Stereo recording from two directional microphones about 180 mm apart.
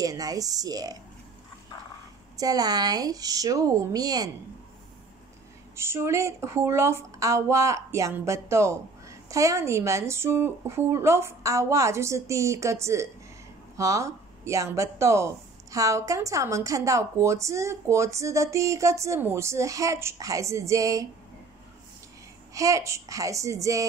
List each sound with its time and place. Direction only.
0.0 s speech: 20° right (ahead or behind)
2.3 s speech: 20° right (ahead or behind)
5.8 s speech: 15° right (ahead or behind)
22.5 s speech: 20° right (ahead or behind)